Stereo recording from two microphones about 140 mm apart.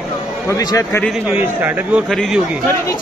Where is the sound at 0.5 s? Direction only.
25° left (ahead or behind).